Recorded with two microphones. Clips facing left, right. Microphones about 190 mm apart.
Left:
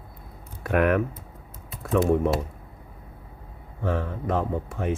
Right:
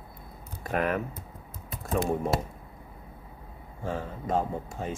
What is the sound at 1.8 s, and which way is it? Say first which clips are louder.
Typing: left 6 dB; 65° left (ahead or behind).